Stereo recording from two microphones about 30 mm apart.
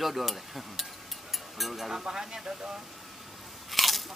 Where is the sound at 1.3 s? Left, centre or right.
Centre.